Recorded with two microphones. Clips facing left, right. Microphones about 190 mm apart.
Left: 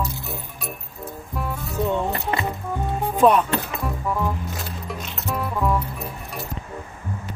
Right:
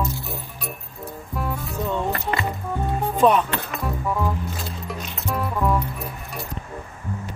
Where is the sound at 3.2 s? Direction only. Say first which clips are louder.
Left 1 dB; 5° left (ahead or behind).